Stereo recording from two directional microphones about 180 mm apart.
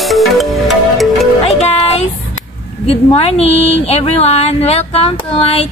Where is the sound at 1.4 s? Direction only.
35° left (ahead or behind).